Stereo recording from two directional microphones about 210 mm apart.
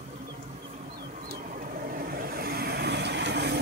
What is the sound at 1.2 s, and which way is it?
Vehicle, 40° right (ahead or behind).